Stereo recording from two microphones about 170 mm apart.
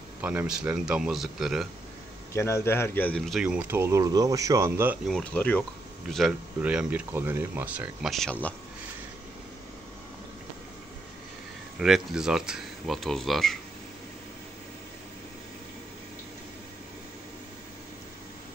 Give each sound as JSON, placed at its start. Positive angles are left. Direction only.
{"t": 0.2, "sound": "speech", "side_deg": -10}
{"t": 2.3, "sound": "speech", "side_deg": 15}
{"t": 5.0, "sound": "speech", "side_deg": 5}
{"t": 11.8, "sound": "speech", "side_deg": -5}